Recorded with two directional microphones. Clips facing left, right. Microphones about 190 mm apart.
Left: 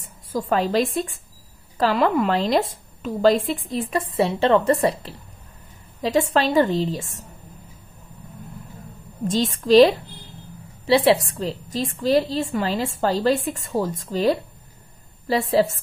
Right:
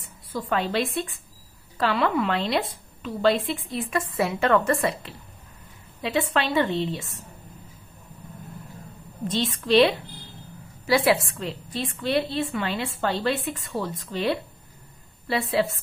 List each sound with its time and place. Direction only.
0.0 s a woman's voice: 45° left (ahead or behind)
9.3 s a woman's voice: 45° left (ahead or behind)